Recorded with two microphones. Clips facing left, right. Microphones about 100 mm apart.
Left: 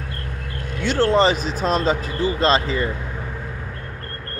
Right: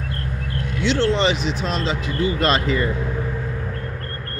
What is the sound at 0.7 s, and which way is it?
Speech, 45° left (ahead or behind).